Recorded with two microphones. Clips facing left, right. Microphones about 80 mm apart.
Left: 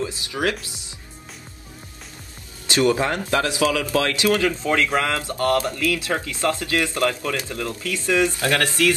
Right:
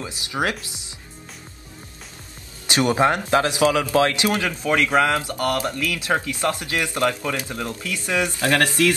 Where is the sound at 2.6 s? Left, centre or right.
Right.